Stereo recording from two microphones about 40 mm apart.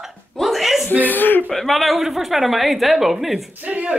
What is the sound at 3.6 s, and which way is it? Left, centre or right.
Speech, right.